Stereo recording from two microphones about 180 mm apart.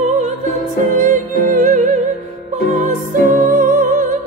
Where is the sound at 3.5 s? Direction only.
50° right (ahead or behind).